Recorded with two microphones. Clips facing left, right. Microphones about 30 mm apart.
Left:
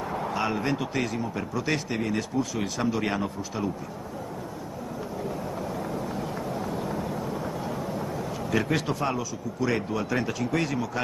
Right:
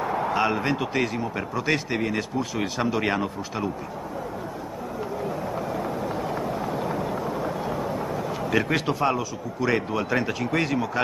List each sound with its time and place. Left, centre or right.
0.0 s speech: centre
5.8 s vehicle: centre